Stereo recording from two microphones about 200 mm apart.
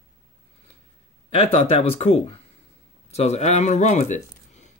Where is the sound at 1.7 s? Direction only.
35° left (ahead or behind).